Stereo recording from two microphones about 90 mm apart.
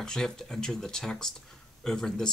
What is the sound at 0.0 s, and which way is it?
Speech, 5° left (ahead or behind).